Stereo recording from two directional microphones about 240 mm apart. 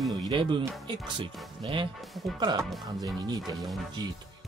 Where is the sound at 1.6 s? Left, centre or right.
Right.